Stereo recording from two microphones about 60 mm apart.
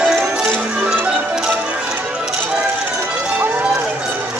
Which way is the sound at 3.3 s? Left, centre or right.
Right.